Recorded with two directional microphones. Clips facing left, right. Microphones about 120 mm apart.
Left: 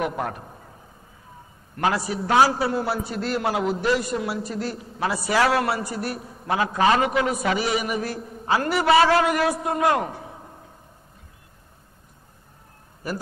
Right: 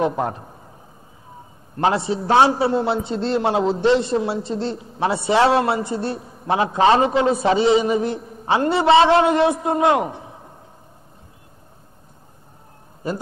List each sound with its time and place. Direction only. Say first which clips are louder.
0.0 s a man's voice: right 5 dB; 25° right (ahead or behind)
1.8 s a man's voice: right 4 dB; 25° right (ahead or behind)
13.0 s a man's voice: right 4 dB; 25° right (ahead or behind)